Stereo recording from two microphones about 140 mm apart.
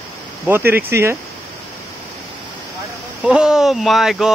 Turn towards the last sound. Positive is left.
turn(degrees=0)  # may be behind; listen again after turning